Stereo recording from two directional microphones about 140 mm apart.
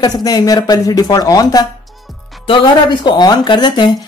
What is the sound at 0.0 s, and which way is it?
Speech, 30° left (ahead or behind).